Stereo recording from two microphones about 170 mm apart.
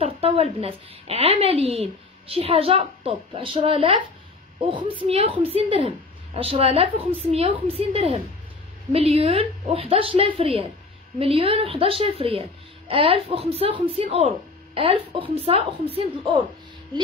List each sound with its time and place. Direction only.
0.0 s a woman's voice: 35° right (ahead or behind)